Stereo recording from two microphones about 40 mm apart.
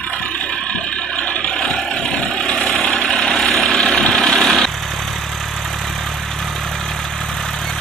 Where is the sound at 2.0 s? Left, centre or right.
Left.